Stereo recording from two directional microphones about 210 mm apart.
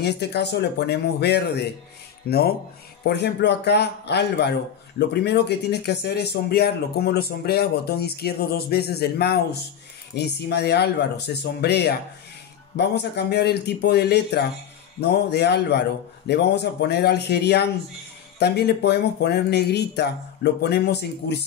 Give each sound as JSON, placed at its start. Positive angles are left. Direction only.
{"t": 0.0, "sound": "a man's voice", "side_deg": 50}